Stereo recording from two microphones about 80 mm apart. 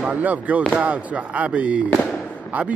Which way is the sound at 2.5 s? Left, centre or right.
Centre.